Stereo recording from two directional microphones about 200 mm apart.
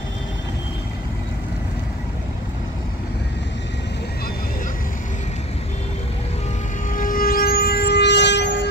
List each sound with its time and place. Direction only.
6.9 s vehicle: 45° left (ahead or behind); by 8.6 s 60° left (ahead or behind)